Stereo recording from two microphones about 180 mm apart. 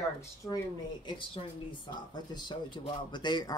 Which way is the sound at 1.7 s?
25° left (ahead or behind).